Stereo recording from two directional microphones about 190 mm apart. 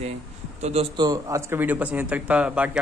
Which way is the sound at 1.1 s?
15° right (ahead or behind).